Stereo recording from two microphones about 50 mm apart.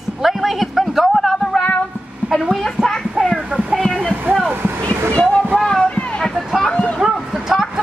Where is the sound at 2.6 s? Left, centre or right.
Centre.